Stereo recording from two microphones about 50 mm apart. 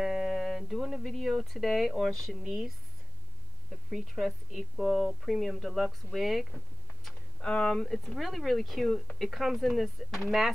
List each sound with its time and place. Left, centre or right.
0.0 s speech: centre
3.9 s speech: centre
7.4 s speech: left
7.7 s speech: centre